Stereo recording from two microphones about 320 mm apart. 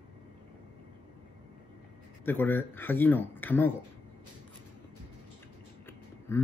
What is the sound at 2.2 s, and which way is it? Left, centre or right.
Speech, centre.